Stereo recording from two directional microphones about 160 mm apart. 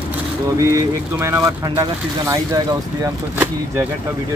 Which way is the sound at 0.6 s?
20° right (ahead or behind).